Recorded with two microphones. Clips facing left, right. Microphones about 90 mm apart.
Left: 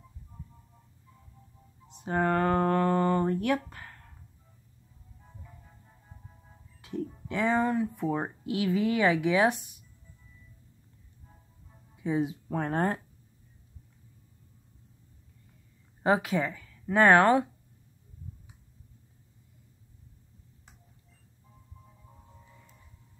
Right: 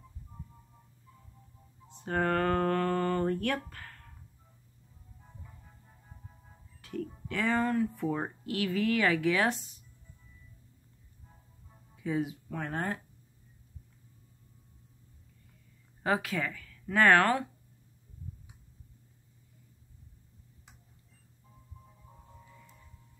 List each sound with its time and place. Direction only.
1.9 s a sound: 20° left (ahead or behind)
6.8 s speech: 20° left (ahead or behind)
12.0 s speech: 25° left (ahead or behind)
12.4 s speech: 35° left (ahead or behind)
16.0 s speech: 20° left (ahead or behind)